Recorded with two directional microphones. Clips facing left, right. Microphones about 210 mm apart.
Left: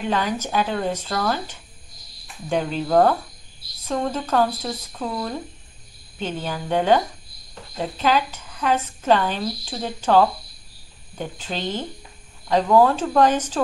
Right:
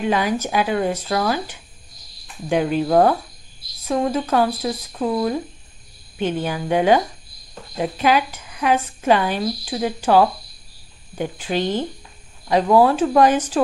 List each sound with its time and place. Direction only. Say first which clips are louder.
0.1 s a woman's voice: right 1 dB; 10° right (ahead or behind)